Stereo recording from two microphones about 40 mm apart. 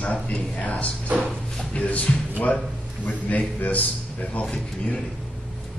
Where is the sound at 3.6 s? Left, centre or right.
Left.